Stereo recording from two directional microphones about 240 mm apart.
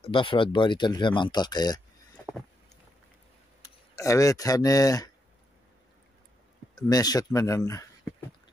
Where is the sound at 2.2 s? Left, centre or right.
Centre.